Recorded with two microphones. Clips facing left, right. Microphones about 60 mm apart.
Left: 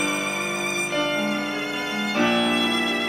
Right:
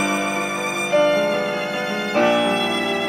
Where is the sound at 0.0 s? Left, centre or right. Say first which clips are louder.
Right 4 dB; right.